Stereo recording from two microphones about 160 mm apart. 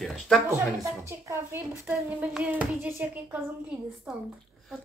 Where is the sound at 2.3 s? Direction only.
10° right (ahead or behind).